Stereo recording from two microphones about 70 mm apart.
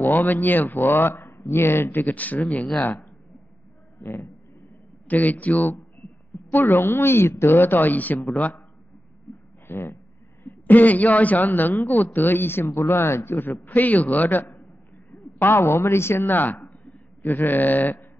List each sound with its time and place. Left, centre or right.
0.0 s a man's voice: left
5.0 s a man's voice: left
6.0 s a sound: centre
6.5 s a man's voice: left
9.3 s a sound: left
9.7 s speech: left
10.4 s a man's voice: left